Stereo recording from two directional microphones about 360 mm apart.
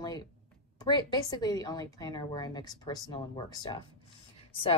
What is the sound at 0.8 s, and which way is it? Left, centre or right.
A woman's voice, centre.